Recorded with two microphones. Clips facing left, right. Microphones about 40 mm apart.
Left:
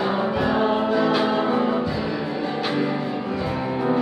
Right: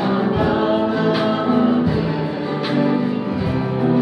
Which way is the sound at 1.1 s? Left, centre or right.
Centre.